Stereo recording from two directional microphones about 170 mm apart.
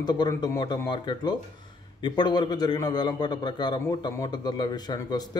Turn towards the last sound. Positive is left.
turn(degrees=25)  # may be behind; listen again after turning